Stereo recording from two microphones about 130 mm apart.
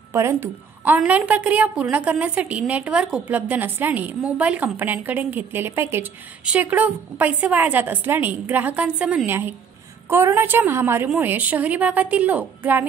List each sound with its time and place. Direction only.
0.1 s a woman's voice: 20° right (ahead or behind)